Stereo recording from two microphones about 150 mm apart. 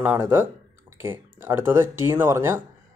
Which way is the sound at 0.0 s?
10° right (ahead or behind).